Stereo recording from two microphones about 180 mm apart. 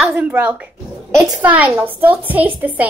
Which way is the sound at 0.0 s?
10° right (ahead or behind).